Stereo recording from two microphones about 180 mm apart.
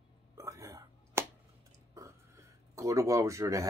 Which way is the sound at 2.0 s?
15° right (ahead or behind).